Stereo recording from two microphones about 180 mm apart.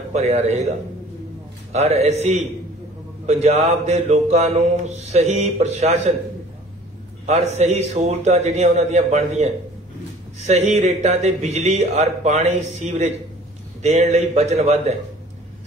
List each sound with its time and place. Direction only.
0.1 s speech: 35° right (ahead or behind)
7.2 s speech: 35° right (ahead or behind)